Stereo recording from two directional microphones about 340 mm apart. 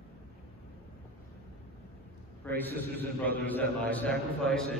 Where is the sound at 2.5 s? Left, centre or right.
Centre.